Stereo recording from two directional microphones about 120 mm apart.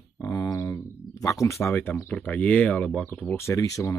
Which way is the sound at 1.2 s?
25° left (ahead or behind).